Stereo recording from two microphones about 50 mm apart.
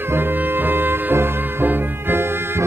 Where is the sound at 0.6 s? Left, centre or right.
Right.